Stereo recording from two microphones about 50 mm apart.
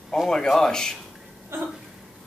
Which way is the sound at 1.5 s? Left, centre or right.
Right.